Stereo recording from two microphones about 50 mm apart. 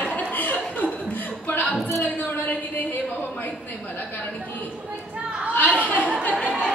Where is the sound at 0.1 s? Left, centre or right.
Left.